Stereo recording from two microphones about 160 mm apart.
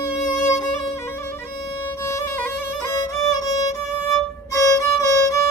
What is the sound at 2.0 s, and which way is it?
Violin, 20° left (ahead or behind).